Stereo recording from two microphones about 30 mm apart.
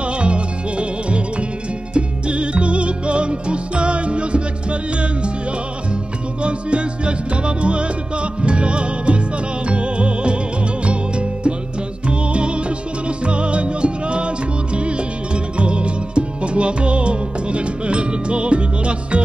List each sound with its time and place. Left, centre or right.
0.0 s music: right
6.4 s music: right